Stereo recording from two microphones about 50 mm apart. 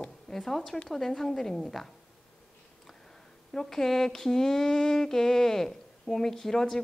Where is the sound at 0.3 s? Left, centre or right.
Centre.